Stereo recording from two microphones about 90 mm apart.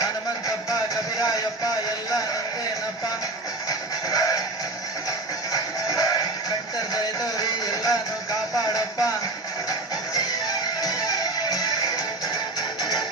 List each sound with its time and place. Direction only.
1.2 s a sound: 45° left (ahead or behind)
4.1 s music: 40° left (ahead or behind)
5.5 s music: 40° left (ahead or behind)